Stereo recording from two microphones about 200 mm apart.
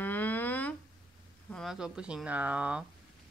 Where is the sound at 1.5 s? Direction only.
Centre (ahead or behind).